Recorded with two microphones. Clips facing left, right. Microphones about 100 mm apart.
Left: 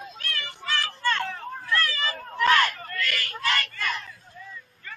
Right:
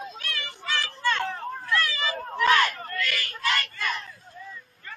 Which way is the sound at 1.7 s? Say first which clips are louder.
Even; 10° right (ahead or behind).